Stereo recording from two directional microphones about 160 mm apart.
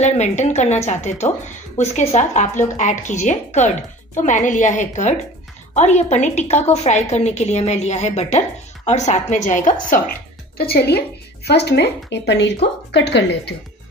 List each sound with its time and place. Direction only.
0.0 s a woman's voice: 45° left (ahead or behind)
10.6 s speech: 80° left